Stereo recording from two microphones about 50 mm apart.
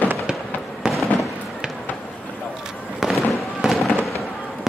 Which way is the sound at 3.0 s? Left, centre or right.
Centre.